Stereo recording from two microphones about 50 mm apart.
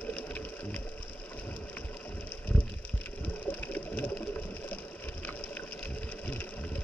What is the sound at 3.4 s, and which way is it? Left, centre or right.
Water, left.